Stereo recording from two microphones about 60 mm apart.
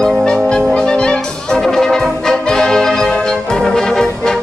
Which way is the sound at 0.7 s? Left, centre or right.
Centre.